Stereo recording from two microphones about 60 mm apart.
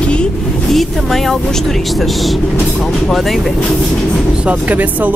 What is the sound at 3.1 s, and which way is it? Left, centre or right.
Speech, centre.